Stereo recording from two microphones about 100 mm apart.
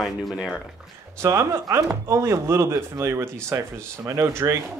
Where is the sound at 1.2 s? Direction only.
30° right (ahead or behind).